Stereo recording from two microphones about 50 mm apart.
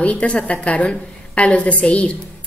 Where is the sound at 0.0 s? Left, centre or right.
Left.